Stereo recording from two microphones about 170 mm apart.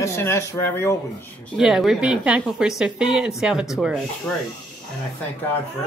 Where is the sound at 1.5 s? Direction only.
Centre (ahead or behind).